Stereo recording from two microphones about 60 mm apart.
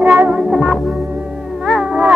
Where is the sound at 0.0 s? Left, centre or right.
Right.